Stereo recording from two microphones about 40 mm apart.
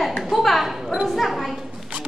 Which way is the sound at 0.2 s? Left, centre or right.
Centre.